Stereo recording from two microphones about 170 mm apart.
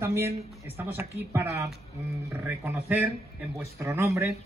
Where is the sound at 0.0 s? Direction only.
15° right (ahead or behind).